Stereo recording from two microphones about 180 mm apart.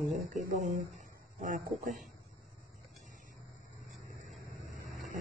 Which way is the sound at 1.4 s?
45° right (ahead or behind).